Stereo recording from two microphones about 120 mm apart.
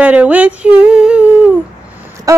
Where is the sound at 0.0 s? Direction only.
10° right (ahead or behind).